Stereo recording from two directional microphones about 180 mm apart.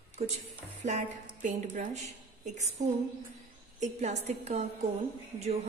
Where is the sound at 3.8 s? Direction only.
40° right (ahead or behind).